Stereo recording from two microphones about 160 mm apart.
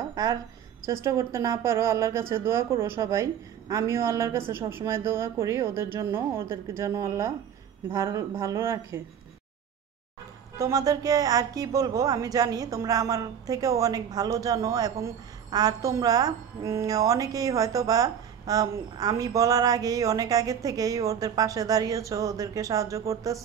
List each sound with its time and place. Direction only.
0.1 s a sound: 20° right (ahead or behind)
1.0 s speech: 20° right (ahead or behind)
10.6 s speech: 20° right (ahead or behind)